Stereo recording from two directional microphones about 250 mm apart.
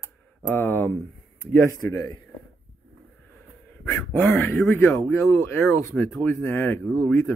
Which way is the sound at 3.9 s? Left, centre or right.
Centre.